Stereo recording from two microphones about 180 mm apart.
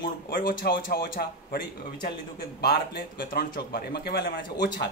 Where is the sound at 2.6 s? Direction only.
55° left (ahead or behind).